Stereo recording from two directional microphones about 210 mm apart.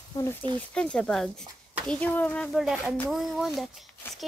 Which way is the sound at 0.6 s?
5° left (ahead or behind).